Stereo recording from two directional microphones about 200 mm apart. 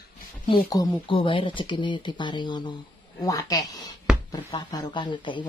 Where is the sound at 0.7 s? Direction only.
20° left (ahead or behind).